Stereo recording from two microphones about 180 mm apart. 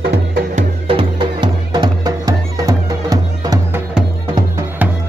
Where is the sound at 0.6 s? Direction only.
30° right (ahead or behind).